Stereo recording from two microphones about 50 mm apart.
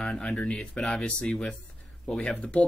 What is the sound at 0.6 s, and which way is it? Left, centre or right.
Speech, centre.